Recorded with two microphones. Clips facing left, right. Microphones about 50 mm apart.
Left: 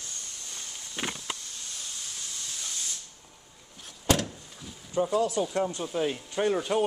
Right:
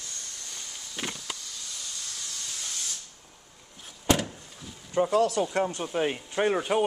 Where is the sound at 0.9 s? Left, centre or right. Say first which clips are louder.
Left 2 dB; left.